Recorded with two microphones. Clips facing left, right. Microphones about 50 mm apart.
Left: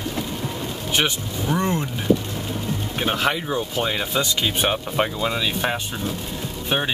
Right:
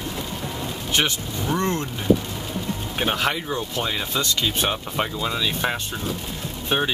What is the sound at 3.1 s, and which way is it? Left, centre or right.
Speech, centre.